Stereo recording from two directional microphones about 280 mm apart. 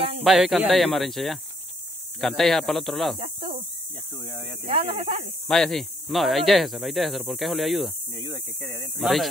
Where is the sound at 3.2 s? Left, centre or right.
Centre.